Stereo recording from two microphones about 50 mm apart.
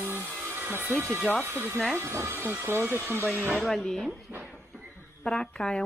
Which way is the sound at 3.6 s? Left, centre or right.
Centre.